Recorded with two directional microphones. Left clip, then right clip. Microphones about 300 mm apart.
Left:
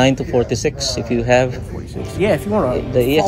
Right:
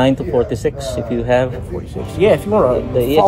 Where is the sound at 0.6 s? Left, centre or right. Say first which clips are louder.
Right 1 dB; left.